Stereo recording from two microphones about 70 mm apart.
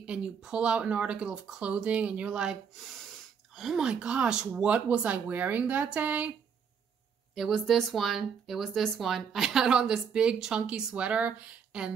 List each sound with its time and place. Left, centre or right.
0.0 s speech: centre
7.3 s speech: centre